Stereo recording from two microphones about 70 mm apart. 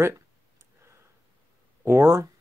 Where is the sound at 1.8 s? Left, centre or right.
Right.